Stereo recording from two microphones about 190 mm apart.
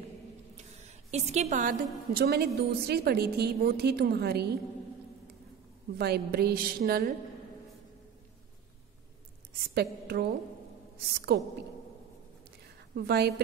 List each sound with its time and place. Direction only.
1.1 s a woman's voice: 35° right (ahead or behind); by 4.6 s 55° right (ahead or behind)
5.9 s a woman's voice: 55° right (ahead or behind)
9.8 s a woman's voice: 55° right (ahead or behind)
12.9 s a woman's voice: 60° right (ahead or behind)